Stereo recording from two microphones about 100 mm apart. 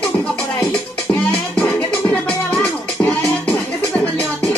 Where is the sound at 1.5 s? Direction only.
10° left (ahead or behind).